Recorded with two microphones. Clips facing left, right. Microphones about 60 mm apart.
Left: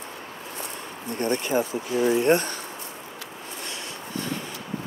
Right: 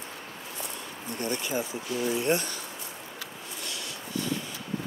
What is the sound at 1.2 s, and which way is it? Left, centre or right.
Speech, left.